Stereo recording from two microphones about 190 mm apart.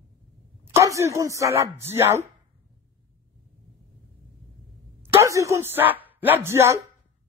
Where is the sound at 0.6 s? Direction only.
15° right (ahead or behind).